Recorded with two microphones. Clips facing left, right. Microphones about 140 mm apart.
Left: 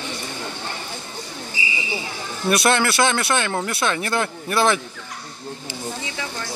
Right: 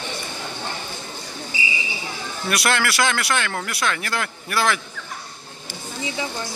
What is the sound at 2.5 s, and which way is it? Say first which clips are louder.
Speech: left 4 dB; 25° left (ahead or behind).